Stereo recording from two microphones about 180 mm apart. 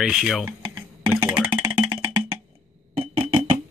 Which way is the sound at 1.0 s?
5° right (ahead or behind).